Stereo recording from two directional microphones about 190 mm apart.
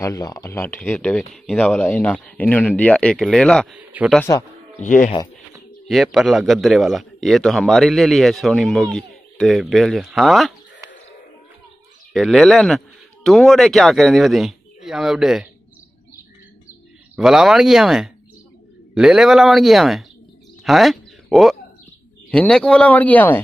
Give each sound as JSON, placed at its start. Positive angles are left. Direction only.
{"t": 0.0, "sound": "a man's voice", "side_deg": 20}
{"t": 4.2, "sound": "speech", "side_deg": 15}
{"t": 4.7, "sound": "speech", "side_deg": 40}
{"t": 5.9, "sound": "a man's voice", "side_deg": 0}
{"t": 12.1, "sound": "a man's voice", "side_deg": 0}
{"t": 17.1, "sound": "a man's voice", "side_deg": 0}